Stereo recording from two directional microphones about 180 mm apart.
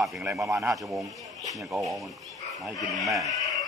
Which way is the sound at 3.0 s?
Centre (ahead or behind).